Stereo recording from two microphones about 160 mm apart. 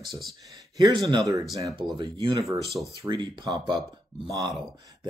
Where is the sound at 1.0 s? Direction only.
25° right (ahead or behind).